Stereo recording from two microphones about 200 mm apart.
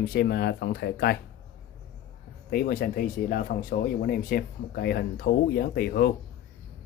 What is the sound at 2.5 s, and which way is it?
Speech, 45° left (ahead or behind).